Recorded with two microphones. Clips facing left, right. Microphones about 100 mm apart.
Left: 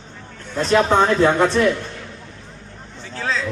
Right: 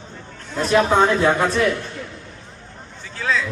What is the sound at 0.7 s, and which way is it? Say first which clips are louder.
Speech: left 1 dB; centre (ahead or behind).